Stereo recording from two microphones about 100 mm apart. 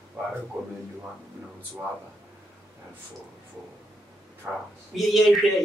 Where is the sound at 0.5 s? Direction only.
20° right (ahead or behind).